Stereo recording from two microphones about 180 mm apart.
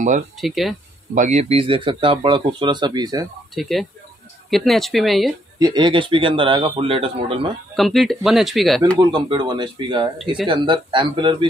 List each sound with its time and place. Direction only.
0.4 s speech: centre (ahead or behind)
1.1 s speech: 45° right (ahead or behind); by 3.3 s 20° right (ahead or behind)
3.5 s speech: centre (ahead or behind)
5.6 s speech: 25° right (ahead or behind)
7.7 s speech: centre (ahead or behind)
8.9 s speech: 25° right (ahead or behind)